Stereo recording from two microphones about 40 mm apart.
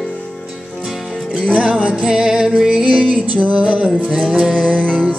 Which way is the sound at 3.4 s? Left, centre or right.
Right.